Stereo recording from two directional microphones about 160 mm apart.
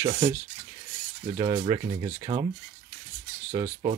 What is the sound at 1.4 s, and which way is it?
Speech, 30° right (ahead or behind).